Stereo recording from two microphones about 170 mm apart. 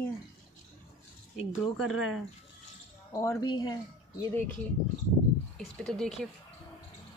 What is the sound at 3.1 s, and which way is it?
Speech, 20° left (ahead or behind).